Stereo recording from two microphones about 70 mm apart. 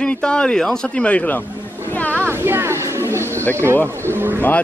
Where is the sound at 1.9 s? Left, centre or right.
Left.